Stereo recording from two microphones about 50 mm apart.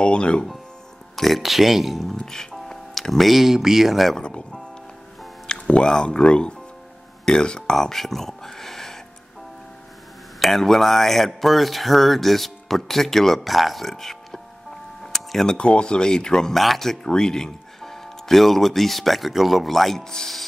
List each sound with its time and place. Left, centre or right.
0.0 s speech: left
1.1 s speech: centre
4.2 s music: centre
5.5 s speech: centre
7.7 s music: centre
10.4 s speech: centre
15.1 s tick-tock: centre
15.5 s speech: centre